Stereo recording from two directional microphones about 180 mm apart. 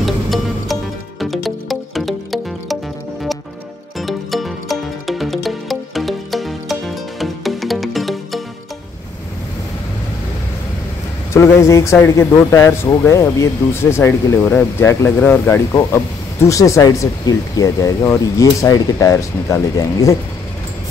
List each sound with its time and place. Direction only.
0.0 s music: centre (ahead or behind)
11.3 s speech: 15° left (ahead or behind)